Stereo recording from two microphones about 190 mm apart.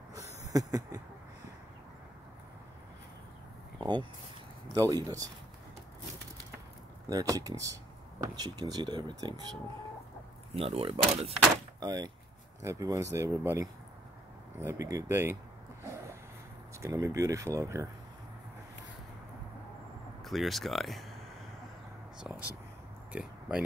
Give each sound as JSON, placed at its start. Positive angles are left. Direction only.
{"t": 0.4, "sound": "a sound", "side_deg": -20}
{"t": 3.8, "sound": "speech", "side_deg": -25}
{"t": 7.1, "sound": "speech", "side_deg": -20}
{"t": 11.8, "sound": "speech", "side_deg": -20}
{"t": 15.8, "sound": "a sound", "side_deg": -15}
{"t": 16.8, "sound": "speech", "side_deg": -15}
{"t": 20.2, "sound": "speech", "side_deg": 0}
{"t": 22.2, "sound": "speech", "side_deg": -10}